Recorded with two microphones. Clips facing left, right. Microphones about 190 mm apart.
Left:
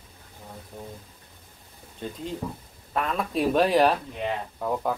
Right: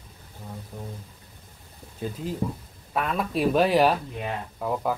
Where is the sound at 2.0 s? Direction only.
5° right (ahead or behind).